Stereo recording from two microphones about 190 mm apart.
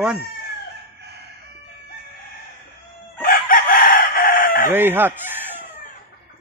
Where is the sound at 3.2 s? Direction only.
45° left (ahead or behind).